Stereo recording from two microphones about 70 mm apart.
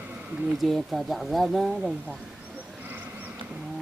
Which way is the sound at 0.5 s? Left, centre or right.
Centre.